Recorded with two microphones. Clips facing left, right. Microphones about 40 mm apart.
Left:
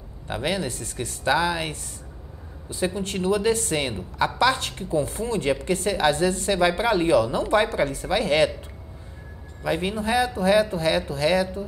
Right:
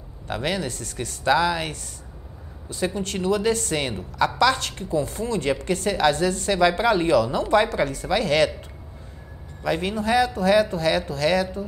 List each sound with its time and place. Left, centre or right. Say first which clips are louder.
0.3 s speech: even; left
0.6 s speech: even; left
9.6 s a man's voice: right 1 dB; left
9.9 s speech: right 2 dB; left